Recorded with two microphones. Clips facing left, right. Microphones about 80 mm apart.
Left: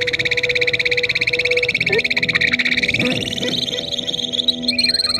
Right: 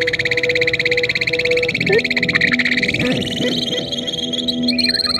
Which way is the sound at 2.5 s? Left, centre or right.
Right.